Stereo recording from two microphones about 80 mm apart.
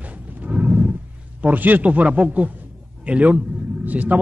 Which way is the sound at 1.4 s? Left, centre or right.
Right.